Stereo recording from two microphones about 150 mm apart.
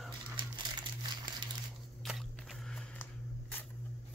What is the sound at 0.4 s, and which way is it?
Crumpling, 30° right (ahead or behind).